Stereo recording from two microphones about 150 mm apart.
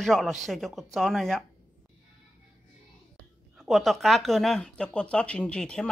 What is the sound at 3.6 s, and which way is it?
Speech, centre (ahead or behind).